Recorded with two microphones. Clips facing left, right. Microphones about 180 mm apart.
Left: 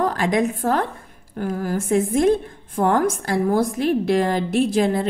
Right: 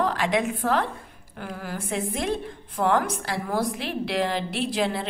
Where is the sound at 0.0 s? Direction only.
45° left (ahead or behind).